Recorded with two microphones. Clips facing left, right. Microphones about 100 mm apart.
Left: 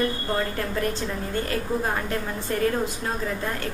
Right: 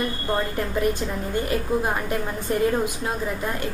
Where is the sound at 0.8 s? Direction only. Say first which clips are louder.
Right 5 dB; 15° right (ahead or behind).